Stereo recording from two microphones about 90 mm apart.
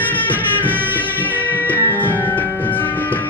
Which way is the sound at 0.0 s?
20° left (ahead or behind).